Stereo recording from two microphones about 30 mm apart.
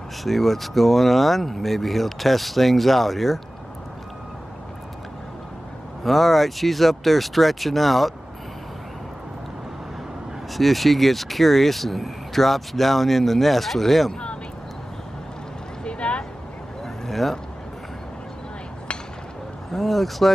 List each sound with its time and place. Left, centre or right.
0.2 s speech: centre
6.0 s speech: centre
10.5 s speech: centre
15.8 s a sound: left
16.8 s vehicle: centre
19.7 s speech: centre